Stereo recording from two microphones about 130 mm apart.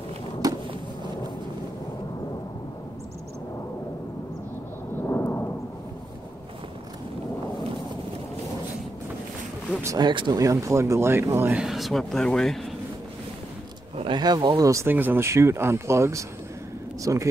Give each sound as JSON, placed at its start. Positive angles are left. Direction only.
{"t": 0.4, "sound": "a sound", "side_deg": -30}
{"t": 5.0, "sound": "thunder", "side_deg": 15}
{"t": 9.9, "sound": "speech", "side_deg": -35}
{"t": 11.5, "sound": "speech", "side_deg": -5}
{"t": 13.9, "sound": "speech", "side_deg": -35}